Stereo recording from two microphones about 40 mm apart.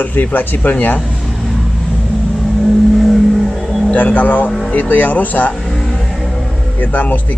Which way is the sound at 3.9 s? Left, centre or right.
Left.